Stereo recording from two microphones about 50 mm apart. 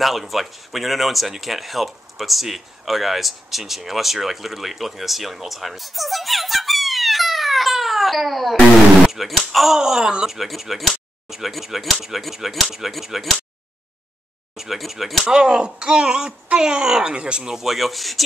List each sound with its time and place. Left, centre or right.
0.0 s speech: centre
14.6 s speech: centre
15.2 s speech: centre